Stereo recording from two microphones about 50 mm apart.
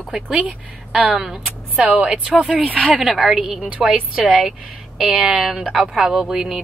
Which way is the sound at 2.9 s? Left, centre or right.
Centre.